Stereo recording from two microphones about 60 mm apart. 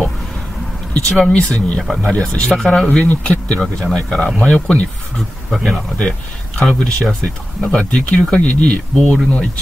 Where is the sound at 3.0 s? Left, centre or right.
Left.